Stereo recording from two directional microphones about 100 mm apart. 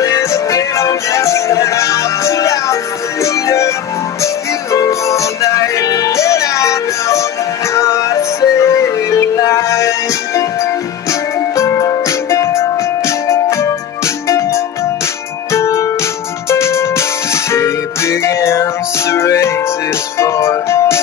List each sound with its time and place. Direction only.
0.0 s music: 30° left (ahead or behind)